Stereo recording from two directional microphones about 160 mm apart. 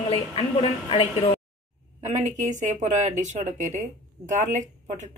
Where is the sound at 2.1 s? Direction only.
50° right (ahead or behind).